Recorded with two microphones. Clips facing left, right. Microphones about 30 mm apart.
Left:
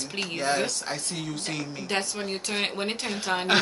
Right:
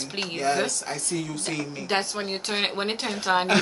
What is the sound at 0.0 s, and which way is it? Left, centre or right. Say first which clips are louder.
Speech: right 1 dB; centre.